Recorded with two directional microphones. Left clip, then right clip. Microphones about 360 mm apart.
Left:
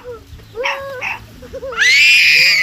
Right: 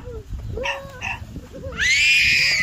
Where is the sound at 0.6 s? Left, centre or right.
Right.